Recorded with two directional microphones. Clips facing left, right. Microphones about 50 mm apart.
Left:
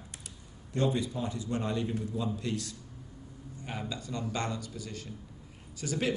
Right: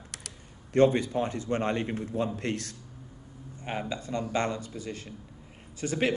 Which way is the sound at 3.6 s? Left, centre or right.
Right.